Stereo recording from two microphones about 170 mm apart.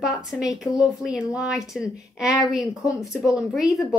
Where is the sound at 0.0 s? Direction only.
5° right (ahead or behind).